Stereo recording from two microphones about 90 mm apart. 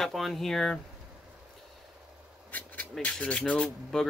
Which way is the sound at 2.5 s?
20° left (ahead or behind).